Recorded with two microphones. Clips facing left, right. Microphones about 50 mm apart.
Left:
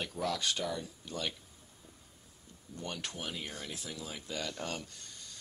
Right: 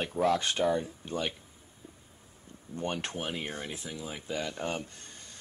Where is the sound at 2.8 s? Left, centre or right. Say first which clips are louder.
Right 7 dB; right.